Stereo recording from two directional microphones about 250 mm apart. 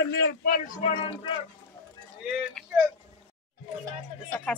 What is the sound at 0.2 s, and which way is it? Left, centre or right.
Speech, left.